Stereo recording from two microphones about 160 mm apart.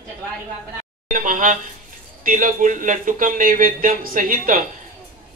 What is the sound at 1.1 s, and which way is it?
A man's voice, 55° right (ahead or behind).